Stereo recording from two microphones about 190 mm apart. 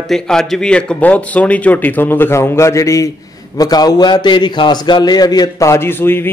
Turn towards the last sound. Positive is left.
turn(degrees=10)  # may be behind; listen again after turning